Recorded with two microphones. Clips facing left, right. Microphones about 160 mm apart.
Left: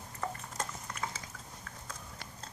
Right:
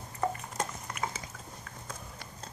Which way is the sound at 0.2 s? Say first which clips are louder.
Right 6 dB; 15° right (ahead or behind).